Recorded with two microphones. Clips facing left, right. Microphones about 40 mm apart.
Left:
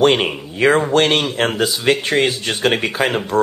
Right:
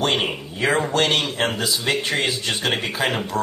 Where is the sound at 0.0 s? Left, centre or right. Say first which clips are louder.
Left 7 dB; left.